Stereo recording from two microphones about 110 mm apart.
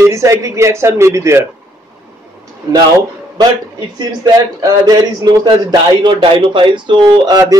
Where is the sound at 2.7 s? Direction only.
35° right (ahead or behind).